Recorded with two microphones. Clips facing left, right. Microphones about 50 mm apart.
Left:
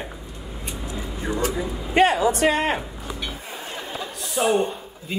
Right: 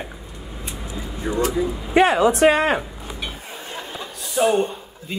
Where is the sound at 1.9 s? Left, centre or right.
Right.